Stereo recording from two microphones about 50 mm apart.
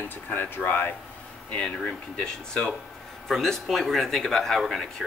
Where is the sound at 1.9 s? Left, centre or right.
Centre.